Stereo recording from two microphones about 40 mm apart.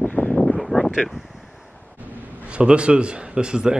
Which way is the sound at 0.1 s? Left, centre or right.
Left.